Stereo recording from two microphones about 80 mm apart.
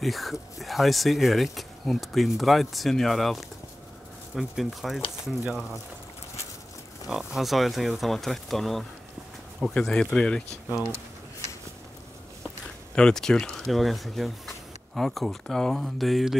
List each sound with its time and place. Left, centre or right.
0.0 s speech: centre
7.1 s speech: centre
12.9 s speech: centre